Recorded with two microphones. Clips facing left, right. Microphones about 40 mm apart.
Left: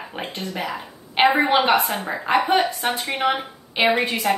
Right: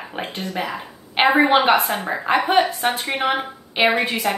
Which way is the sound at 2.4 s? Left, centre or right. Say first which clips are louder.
Right 2 dB; right.